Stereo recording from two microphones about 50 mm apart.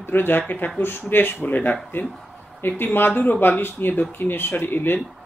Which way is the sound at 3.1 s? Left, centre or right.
Left.